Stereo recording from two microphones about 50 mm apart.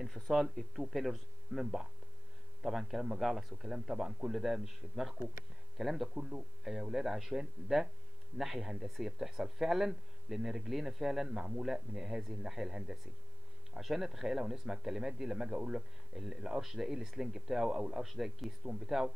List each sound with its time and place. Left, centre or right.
0.0 s speech: centre
17.7 s speech: right
18.0 s speech: centre